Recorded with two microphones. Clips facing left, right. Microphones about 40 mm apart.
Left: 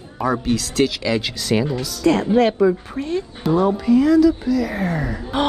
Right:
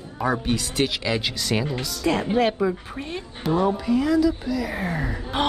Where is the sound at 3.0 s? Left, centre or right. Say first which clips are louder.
Left 9 dB; centre.